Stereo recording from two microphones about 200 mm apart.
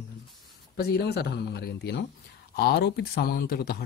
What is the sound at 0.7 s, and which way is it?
Speech, 55° left (ahead or behind).